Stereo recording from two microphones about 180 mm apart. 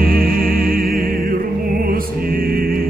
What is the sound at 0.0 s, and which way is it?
Music, 55° right (ahead or behind).